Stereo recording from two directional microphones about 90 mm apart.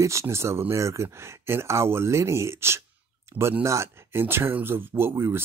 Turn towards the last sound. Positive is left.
turn(degrees=-30)  # may be behind; listen again after turning